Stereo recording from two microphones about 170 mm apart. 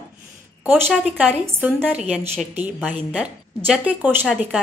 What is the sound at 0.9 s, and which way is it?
A woman's voice, 5° right (ahead or behind).